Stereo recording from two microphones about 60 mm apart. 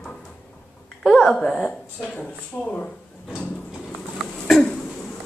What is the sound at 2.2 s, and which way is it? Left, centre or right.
Speech, left.